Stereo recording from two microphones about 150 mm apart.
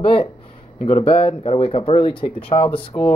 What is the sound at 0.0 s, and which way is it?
Speech, 35° left (ahead or behind).